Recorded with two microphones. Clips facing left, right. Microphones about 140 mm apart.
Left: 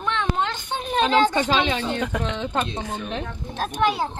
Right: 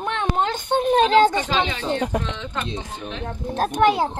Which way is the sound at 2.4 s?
45° left (ahead or behind).